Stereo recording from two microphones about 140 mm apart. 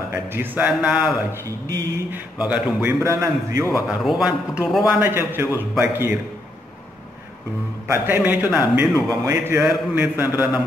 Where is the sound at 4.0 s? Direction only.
5° right (ahead or behind).